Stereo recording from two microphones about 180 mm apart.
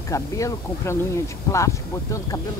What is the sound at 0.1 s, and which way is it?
Speech, 15° left (ahead or behind).